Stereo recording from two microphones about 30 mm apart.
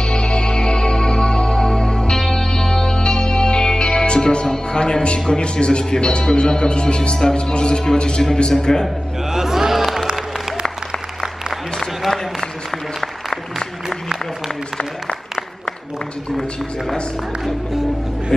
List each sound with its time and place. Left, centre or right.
0.0 s music: left
2.1 s music: centre
2.5 s music: left
5.4 s a man's voice: left
9.3 s a sound: centre
9.8 s music: centre